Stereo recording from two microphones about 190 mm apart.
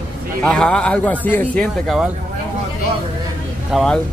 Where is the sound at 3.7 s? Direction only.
5° left (ahead or behind).